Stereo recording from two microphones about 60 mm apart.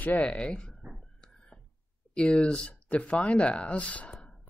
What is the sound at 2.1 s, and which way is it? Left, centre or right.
Speech, centre.